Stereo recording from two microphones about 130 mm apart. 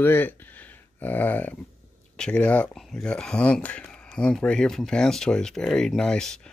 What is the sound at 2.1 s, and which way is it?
Speech, 5° left (ahead or behind).